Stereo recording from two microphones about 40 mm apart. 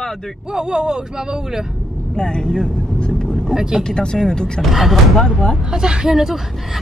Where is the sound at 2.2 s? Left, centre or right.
Centre.